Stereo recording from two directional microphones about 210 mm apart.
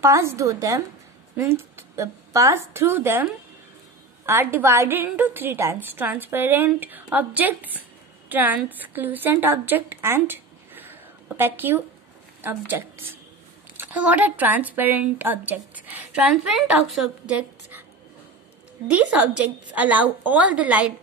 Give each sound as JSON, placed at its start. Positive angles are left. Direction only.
{"t": 0.0, "sound": "a woman's voice", "side_deg": -15}
{"t": 18.9, "sound": "a woman's voice", "side_deg": -5}